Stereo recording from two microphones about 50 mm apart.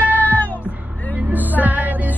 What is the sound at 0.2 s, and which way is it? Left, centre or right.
Music, left.